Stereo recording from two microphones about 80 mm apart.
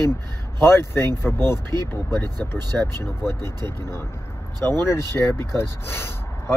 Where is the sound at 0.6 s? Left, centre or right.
Left.